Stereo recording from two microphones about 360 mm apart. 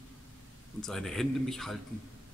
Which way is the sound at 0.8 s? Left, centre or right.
Centre.